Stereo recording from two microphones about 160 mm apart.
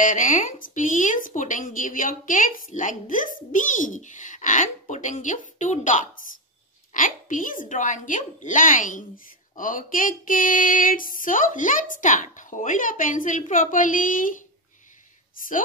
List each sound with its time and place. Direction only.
0.0 s a woman's voice: 55° left (ahead or behind)